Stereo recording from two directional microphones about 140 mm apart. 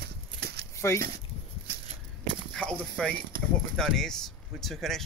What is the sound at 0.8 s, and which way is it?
Speech, 20° left (ahead or behind).